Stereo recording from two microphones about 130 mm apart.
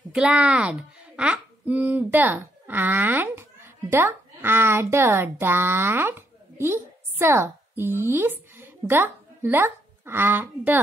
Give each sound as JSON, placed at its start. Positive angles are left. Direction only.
{"t": 0.1, "sound": "a child's voice", "side_deg": -5}